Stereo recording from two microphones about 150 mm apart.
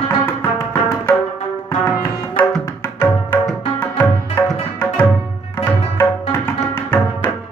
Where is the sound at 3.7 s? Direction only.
15° left (ahead or behind).